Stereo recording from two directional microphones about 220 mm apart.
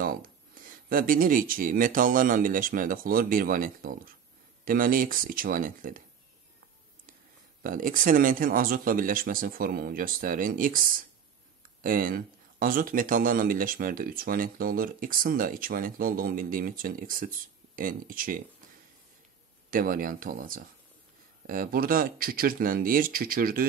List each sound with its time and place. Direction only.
0.0 s speech: 40° right (ahead or behind)
7.6 s speech: 40° right (ahead or behind)
19.7 s speech: 40° right (ahead or behind)